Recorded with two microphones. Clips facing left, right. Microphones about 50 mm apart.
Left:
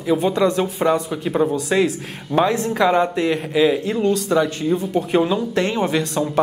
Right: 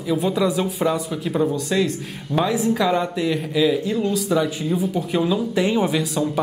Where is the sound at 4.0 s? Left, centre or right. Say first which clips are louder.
Left 3 dB; centre.